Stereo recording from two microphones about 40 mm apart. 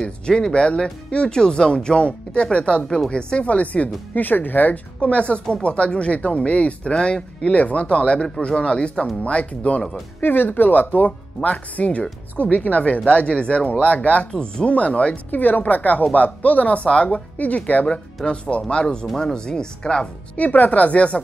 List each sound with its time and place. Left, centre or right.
0.0 s speech: left
3.4 s speech: left
10.2 s speech: left
11.1 s speech: left
14.3 s speech: left
14.7 s speech: left
17.8 s speech: left
20.3 s speech: left